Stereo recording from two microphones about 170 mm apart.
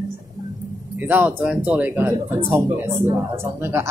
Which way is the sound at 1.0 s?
10° right (ahead or behind).